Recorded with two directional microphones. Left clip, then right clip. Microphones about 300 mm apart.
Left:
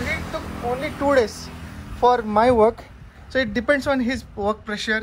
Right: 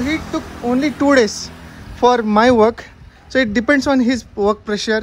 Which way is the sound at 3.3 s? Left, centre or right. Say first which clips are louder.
Right 5 dB; right.